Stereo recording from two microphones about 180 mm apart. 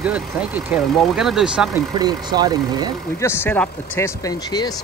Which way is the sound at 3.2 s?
10° left (ahead or behind).